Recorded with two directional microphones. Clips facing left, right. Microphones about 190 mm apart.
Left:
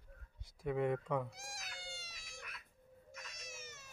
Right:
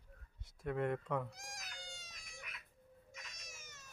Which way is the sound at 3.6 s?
10° left (ahead or behind).